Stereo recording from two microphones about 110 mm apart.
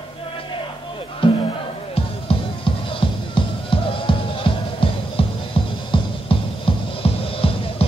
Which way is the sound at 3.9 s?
55° left (ahead or behind).